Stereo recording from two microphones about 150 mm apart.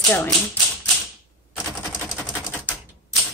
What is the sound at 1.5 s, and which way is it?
Typewriter, 15° left (ahead or behind).